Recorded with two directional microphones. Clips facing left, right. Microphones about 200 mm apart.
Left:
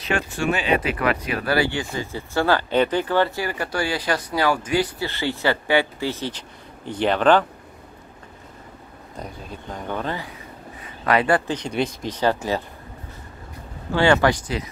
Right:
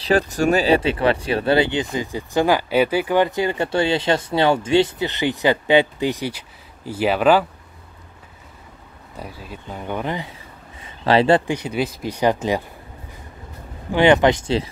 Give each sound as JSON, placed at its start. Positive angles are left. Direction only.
{"t": 0.0, "sound": "speech", "side_deg": -35}
{"t": 9.1, "sound": "speech", "side_deg": -5}
{"t": 10.8, "sound": "a sound", "side_deg": -25}
{"t": 11.4, "sound": "speech", "side_deg": -10}
{"t": 13.9, "sound": "speech", "side_deg": -20}